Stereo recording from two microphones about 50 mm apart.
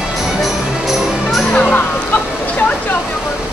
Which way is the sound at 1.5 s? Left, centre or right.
Left.